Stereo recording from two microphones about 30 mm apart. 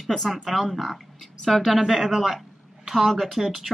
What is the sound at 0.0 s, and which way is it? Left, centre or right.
A woman's voice, centre.